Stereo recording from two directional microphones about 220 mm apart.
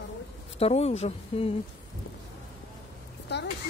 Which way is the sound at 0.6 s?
30° left (ahead or behind).